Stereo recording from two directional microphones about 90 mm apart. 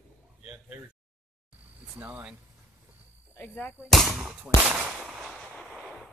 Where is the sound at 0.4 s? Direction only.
15° right (ahead or behind).